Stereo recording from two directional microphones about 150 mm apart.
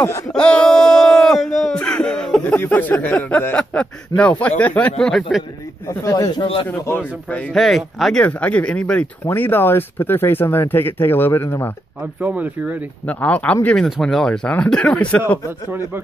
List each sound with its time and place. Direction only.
0.3 s speech: 5° left (ahead or behind)
5.9 s speech: 20° left (ahead or behind)
7.2 s speech: 10° left (ahead or behind)
12.0 s speech: 10° right (ahead or behind)
13.0 s speech: 10° left (ahead or behind)